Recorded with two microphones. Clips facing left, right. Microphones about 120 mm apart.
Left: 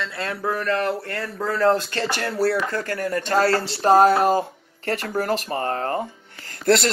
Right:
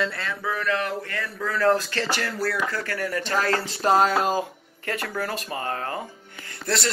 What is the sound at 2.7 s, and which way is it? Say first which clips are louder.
Speech: left 3 dB; 40° left (ahead or behind).